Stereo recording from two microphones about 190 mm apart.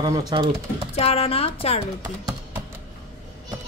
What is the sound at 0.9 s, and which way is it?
Speech, 30° left (ahead or behind).